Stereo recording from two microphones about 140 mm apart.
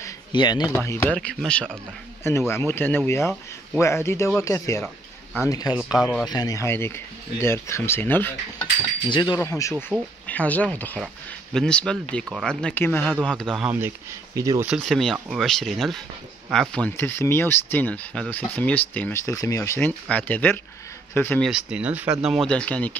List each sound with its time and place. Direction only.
0.3 s speech: 30° left (ahead or behind)
1.1 s speech: 5° left (ahead or behind)
2.2 s speech: 20° left (ahead or behind)
5.8 s speech: 5° right (ahead or behind)
6.2 s speech: 30° left (ahead or behind)
9.1 s speech: 30° left (ahead or behind); by 13.7 s 5° left (ahead or behind)
13.7 s speech: 15° right (ahead or behind)
14.8 s speech: centre (ahead or behind)
16.9 s speech: 15° left (ahead or behind)
19.2 s speech: 25° left (ahead or behind)
21.4 s speech: 5° right (ahead or behind)